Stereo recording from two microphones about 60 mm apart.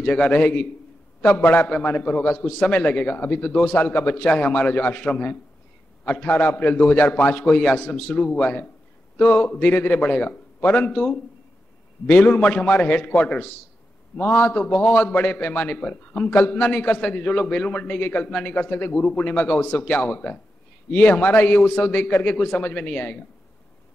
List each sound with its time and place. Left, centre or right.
0.0 s a man's voice: centre
1.7 s a man's voice: centre
12.4 s a man's voice: centre